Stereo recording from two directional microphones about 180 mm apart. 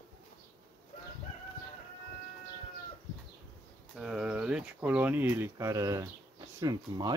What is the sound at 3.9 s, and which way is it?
Speech, centre (ahead or behind).